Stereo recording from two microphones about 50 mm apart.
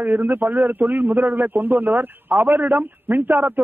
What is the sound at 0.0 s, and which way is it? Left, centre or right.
Speech, right.